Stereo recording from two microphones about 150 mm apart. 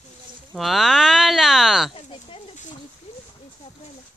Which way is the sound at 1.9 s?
35° left (ahead or behind).